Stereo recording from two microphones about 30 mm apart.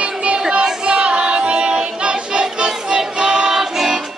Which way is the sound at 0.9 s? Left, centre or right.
Right.